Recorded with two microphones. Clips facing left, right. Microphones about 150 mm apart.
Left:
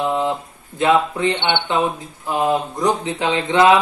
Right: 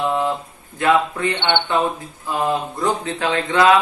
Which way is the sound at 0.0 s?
20° left (ahead or behind).